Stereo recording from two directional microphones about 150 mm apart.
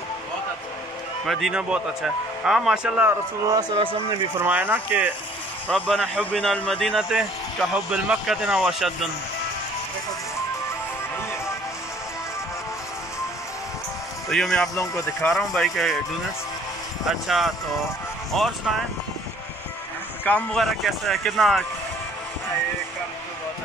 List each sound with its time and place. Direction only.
1.2 s speech: centre (ahead or behind)
3.5 s speech: 30° right (ahead or behind)
4.4 s speech: 10° right (ahead or behind)
5.7 s speech: 5° left (ahead or behind)
6.9 s speech: 5° right (ahead or behind)
14.3 s speech: centre (ahead or behind)
14.8 s speech: 20° left (ahead or behind)
15.3 s speech: centre (ahead or behind)
17.0 s speech: centre (ahead or behind)
20.2 s speech: 5° left (ahead or behind)